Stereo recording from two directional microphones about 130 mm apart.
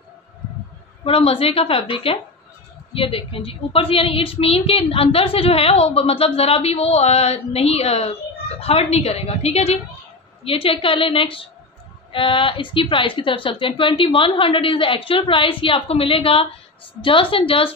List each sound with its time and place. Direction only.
1.0 s a woman's voice: 50° left (ahead or behind)